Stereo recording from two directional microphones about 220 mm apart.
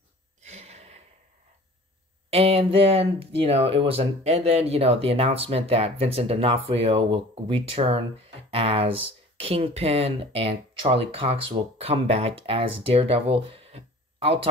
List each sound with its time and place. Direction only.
0.4 s gasp: 30° right (ahead or behind)
2.3 s speech: 25° right (ahead or behind)